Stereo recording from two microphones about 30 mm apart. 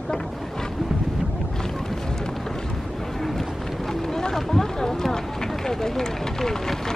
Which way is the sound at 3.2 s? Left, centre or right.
Centre.